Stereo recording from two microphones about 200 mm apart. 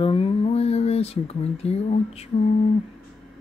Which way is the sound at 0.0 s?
25° left (ahead or behind).